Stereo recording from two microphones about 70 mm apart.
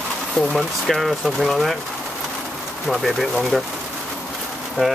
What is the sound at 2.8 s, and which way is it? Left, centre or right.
Speech, centre.